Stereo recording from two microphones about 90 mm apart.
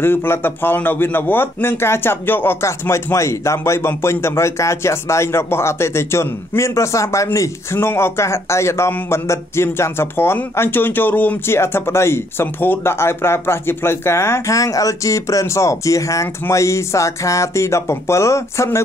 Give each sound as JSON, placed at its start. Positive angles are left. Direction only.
{"t": 0.0, "sound": "speech", "side_deg": 25}